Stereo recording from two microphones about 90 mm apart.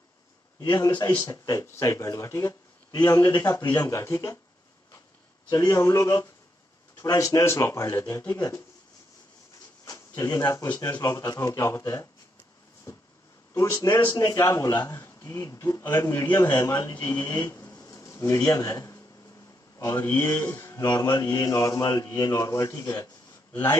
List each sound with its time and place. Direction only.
0.6 s a man's voice: 45° left (ahead or behind)
5.5 s speech: 35° left (ahead or behind)
9.8 s speech: 35° left (ahead or behind)
13.6 s a man's voice: 35° left (ahead or behind)
19.8 s a man's voice: 25° left (ahead or behind)
20.2 s speech: 35° left (ahead or behind)